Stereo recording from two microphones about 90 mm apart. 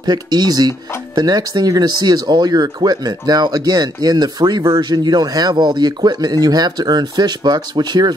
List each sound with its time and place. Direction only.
0.0 s speech: 50° right (ahead or behind)